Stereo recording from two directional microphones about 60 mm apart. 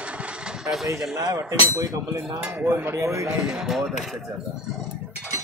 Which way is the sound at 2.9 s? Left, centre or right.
Right.